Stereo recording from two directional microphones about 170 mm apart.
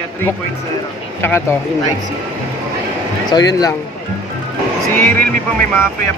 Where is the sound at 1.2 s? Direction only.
10° left (ahead or behind).